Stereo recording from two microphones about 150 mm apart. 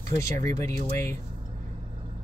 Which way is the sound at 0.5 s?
20° left (ahead or behind).